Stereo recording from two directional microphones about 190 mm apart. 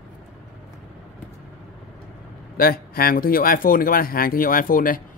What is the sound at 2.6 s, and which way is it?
Speech, 50° left (ahead or behind).